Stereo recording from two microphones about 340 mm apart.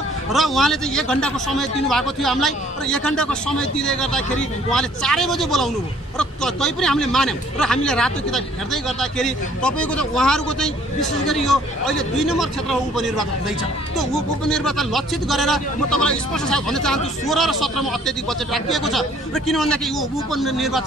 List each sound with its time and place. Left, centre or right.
0.3 s a man's voice: centre